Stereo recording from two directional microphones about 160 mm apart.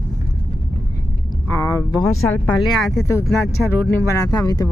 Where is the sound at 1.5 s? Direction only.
20° left (ahead or behind).